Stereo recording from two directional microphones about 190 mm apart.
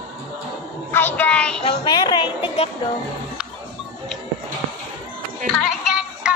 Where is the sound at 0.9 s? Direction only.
10° left (ahead or behind).